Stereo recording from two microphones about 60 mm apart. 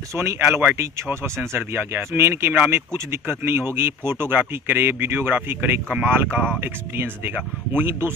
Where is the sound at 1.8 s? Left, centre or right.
Right.